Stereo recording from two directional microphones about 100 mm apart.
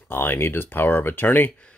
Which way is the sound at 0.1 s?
20° left (ahead or behind).